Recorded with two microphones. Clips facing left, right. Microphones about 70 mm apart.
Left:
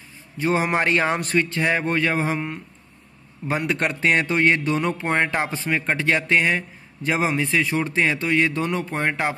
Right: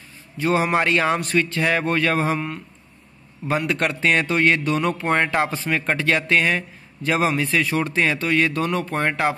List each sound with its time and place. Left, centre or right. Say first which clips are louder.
0.4 s a man's voice: right 1 dB; left